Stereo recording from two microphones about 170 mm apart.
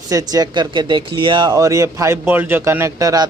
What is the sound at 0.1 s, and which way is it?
Speech, 20° right (ahead or behind).